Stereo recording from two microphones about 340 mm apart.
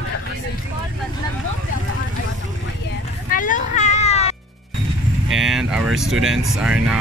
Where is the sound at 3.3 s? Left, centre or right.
Left.